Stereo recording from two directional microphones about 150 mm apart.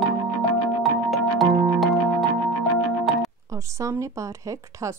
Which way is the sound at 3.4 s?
20° right (ahead or behind).